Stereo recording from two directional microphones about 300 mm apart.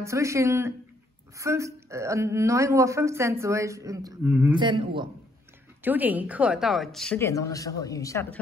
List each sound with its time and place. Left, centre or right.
0.0 s speech: centre
4.6 s a woman's voice: centre